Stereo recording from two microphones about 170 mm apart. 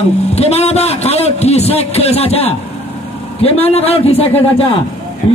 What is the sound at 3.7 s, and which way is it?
A man's voice, 35° left (ahead or behind).